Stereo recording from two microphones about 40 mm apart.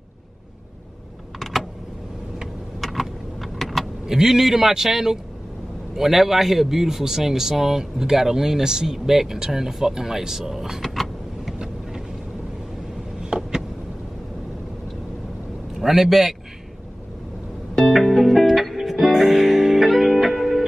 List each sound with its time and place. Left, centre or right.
1.4 s computer keyboard: centre
2.4 s vehicle: centre
4.0 s speech: centre
11.5 s vehicle: centre
13.2 s a sound: right
15.8 s a man's voice: centre
17.7 s music: centre